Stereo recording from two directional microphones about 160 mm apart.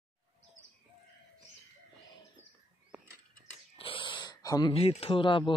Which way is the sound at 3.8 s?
30° left (ahead or behind).